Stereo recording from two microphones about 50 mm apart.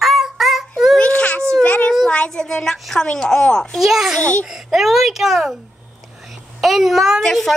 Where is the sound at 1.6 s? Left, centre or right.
Left.